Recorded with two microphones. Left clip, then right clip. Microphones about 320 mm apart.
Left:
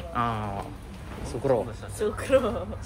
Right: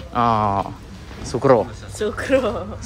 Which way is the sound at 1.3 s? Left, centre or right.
Right.